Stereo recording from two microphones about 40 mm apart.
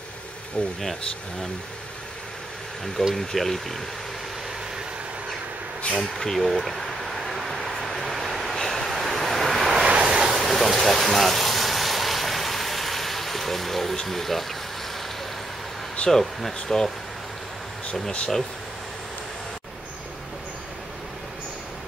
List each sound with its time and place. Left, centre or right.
0.6 s speech: left
3.0 s speech: centre
5.9 s a sound: centre
8.5 s vehicle: centre
9.8 s vehicle: right
10.3 s vehicle: centre
16.1 s speech: centre